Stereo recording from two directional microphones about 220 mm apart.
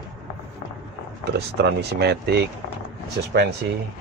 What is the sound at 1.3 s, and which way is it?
Speech, 50° right (ahead or behind).